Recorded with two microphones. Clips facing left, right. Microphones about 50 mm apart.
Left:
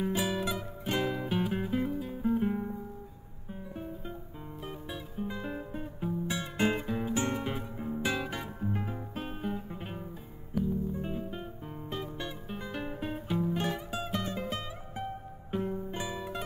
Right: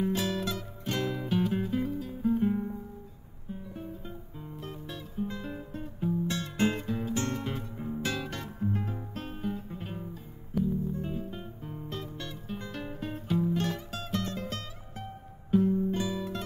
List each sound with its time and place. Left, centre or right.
0.0 s music: centre